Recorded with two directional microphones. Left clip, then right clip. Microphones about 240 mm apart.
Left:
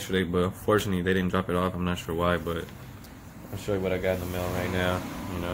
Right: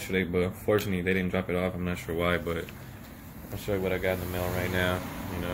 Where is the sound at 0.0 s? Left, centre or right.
Centre.